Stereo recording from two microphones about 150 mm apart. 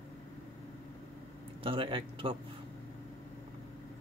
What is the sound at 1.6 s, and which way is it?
Speech, 35° right (ahead or behind).